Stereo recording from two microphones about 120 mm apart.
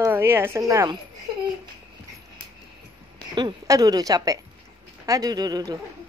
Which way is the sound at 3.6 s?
30° right (ahead or behind).